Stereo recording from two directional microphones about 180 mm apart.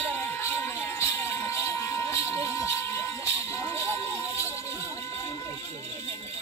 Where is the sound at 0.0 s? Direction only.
10° left (ahead or behind).